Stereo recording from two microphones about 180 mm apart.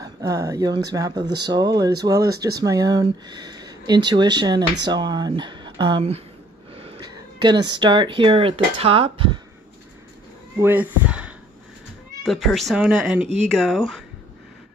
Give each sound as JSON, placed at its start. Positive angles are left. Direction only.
{"t": 0.0, "sound": "speech", "side_deg": -20}
{"t": 1.1, "sound": "speech", "side_deg": -70}
{"t": 1.5, "sound": "speech", "side_deg": -20}
{"t": 6.7, "sound": "a sound", "side_deg": -30}
{"t": 7.5, "sound": "speech", "side_deg": -70}
{"t": 7.8, "sound": "speech", "side_deg": -25}
{"t": 10.6, "sound": "speech", "side_deg": -10}